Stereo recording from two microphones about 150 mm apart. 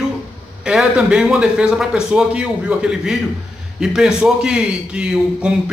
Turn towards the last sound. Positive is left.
turn(degrees=-5)  # may be behind; listen again after turning